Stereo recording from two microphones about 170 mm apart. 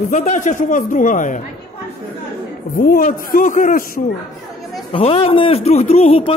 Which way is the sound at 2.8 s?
55° left (ahead or behind).